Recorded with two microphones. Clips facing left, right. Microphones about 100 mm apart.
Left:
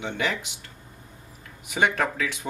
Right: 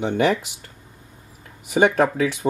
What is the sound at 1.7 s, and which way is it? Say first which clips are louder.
Speech: right 7 dB; 40° right (ahead or behind).